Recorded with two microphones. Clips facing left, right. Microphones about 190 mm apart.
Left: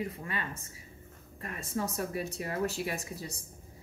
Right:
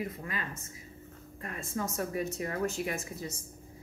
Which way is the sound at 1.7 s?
35° left (ahead or behind).